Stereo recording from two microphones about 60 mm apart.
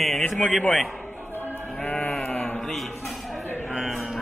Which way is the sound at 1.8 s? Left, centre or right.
Left.